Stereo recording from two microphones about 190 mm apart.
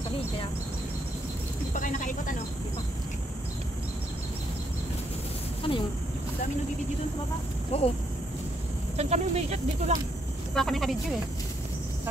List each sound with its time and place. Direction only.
1.7 s speech: 45° left (ahead or behind)
5.6 s speech: 30° left (ahead or behind)
7.7 s speech: 30° left (ahead or behind)
8.9 s speech: 35° right (ahead or behind)
10.5 s speech: centre (ahead or behind)